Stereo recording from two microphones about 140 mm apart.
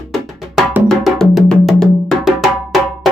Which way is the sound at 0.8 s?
Centre (ahead or behind).